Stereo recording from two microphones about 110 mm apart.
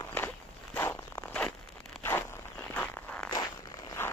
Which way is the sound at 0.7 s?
20° left (ahead or behind).